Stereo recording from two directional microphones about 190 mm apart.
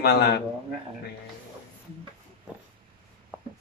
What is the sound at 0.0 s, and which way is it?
Speech, 60° left (ahead or behind).